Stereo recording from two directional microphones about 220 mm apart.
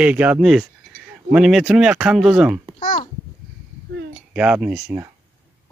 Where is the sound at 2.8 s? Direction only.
35° left (ahead or behind).